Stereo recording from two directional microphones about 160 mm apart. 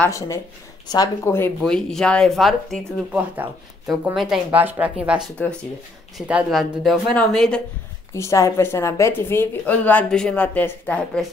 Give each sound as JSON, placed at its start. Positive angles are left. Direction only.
{"t": 0.8, "sound": "a woman's voice", "side_deg": 25}
{"t": 1.6, "sound": "speech", "side_deg": 5}
{"t": 8.1, "sound": "a woman's voice", "side_deg": 20}